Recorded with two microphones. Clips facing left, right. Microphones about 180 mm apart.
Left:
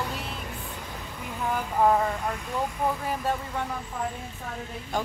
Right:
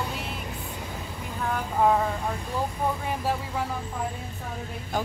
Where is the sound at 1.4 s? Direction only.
5° left (ahead or behind).